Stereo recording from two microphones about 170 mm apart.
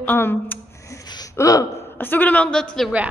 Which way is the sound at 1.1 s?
20° left (ahead or behind).